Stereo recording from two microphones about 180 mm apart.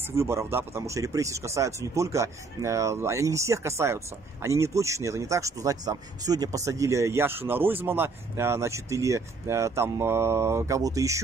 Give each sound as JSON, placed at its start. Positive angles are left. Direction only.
{"t": 0.0, "sound": "speech", "side_deg": -15}